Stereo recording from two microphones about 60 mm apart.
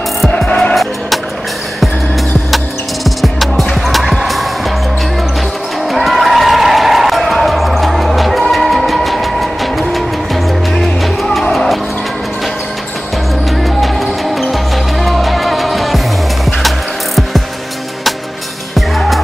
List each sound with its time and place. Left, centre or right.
0.5 s music: centre
2.5 s music: centre
5.9 s music: centre
13.6 s music: centre
18.8 s music: centre